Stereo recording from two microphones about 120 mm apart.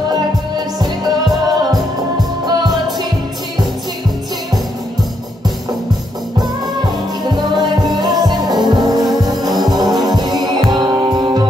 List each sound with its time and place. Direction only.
0.7 s music: 35° right (ahead or behind)
6.3 s music: 35° right (ahead or behind)